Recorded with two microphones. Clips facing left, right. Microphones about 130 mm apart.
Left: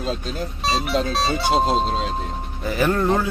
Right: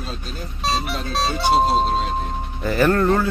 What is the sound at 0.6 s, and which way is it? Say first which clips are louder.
Speech: left 2 dB; centre (ahead or behind).